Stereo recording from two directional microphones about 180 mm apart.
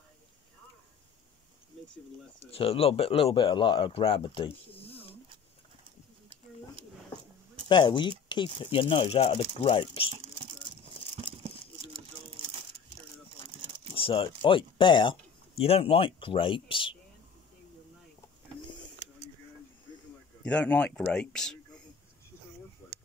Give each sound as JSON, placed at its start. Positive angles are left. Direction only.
{"t": 2.4, "sound": "speech", "side_deg": 35}
{"t": 7.6, "sound": "speech", "side_deg": 25}
{"t": 10.2, "sound": "whispering", "side_deg": -35}
{"t": 13.9, "sound": "speech", "side_deg": 30}
{"t": 20.4, "sound": "speech", "side_deg": 5}
{"t": 22.8, "sound": "a sound", "side_deg": 10}